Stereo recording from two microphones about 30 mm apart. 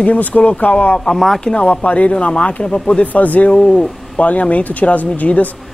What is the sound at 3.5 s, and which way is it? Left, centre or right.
Speech, left.